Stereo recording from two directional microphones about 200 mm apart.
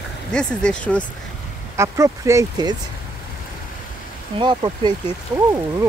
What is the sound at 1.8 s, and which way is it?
Speech, 15° right (ahead or behind).